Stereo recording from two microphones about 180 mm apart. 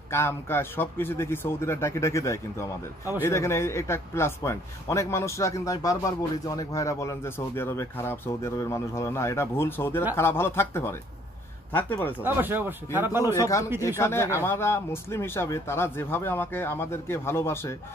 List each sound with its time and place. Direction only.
0.1 s a man's voice: 15° left (ahead or behind)
12.2 s speech: 10° right (ahead or behind)
13.2 s a man's voice: 20° left (ahead or behind)